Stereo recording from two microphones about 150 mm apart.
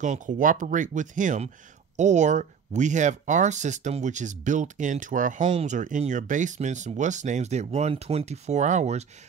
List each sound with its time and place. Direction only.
0.0 s speech: 55° right (ahead or behind)
5.5 s speech: 40° right (ahead or behind)
5.8 s speech: 55° right (ahead or behind)